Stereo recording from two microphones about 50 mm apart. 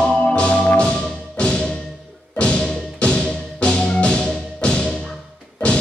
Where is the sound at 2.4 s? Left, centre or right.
Left.